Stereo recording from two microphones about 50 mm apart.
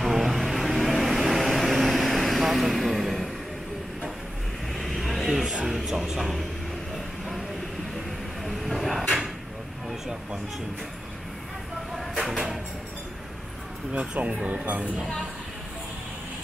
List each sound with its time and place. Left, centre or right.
0.0 s vehicle: centre
4.7 s vehicle: centre
5.4 s music: centre
5.7 s music: centre
6.0 s a sound: centre
8.5 s vehicle: centre
12.2 s a sound: centre
13.9 s speech: right